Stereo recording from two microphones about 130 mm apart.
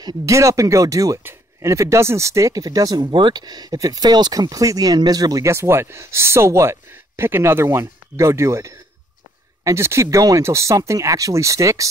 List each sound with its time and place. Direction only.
0.0 s speech: 25° right (ahead or behind)